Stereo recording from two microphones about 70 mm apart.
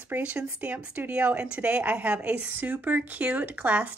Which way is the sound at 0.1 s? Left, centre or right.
Right.